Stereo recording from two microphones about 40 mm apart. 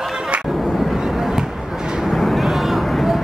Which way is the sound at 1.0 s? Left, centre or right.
Centre.